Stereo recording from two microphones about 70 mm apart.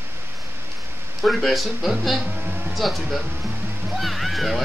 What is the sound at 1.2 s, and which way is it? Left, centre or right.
Speech, centre.